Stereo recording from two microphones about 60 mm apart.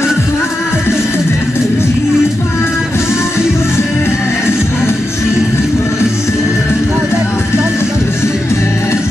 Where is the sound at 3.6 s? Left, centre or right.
Left.